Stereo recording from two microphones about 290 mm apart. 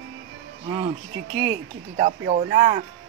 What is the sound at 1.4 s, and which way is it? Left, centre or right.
Speech, right.